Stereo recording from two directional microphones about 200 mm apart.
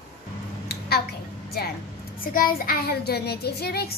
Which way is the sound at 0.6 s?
55° left (ahead or behind).